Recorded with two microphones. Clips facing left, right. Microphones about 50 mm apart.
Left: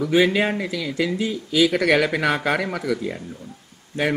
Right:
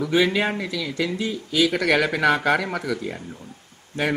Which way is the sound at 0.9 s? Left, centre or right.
Left.